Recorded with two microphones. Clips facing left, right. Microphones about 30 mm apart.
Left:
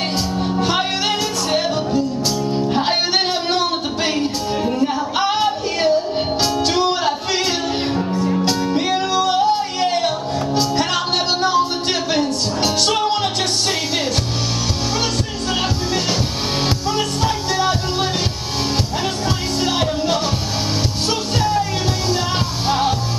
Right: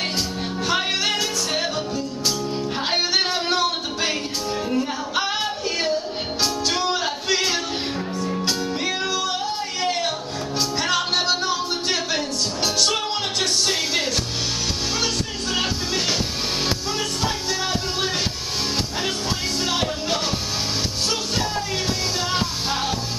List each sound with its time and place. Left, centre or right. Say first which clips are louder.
0.6 s music: left 2 dB; centre
15.5 s music: left 3 dB; centre
19.6 s music: left 7 dB; centre
22.7 s music: left 10 dB; centre